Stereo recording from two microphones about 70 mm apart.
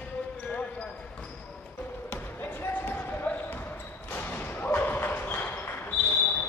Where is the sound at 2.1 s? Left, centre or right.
Left.